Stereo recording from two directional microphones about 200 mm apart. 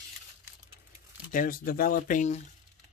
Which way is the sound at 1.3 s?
45° left (ahead or behind).